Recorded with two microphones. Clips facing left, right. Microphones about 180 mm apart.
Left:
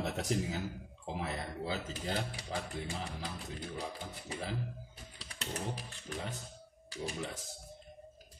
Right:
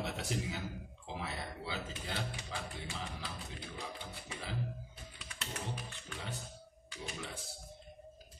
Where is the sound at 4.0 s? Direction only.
40° left (ahead or behind).